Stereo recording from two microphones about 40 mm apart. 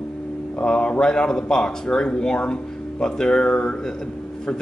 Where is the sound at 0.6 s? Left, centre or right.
Left.